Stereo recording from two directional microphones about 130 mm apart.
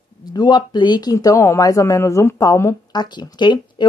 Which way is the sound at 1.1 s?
25° left (ahead or behind).